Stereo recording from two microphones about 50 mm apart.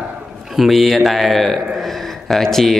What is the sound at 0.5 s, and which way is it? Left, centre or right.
Speech, centre.